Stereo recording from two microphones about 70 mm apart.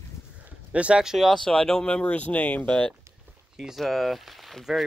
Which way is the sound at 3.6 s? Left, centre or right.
Centre.